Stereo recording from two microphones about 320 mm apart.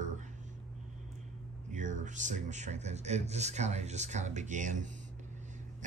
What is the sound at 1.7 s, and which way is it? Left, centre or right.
Speech, right.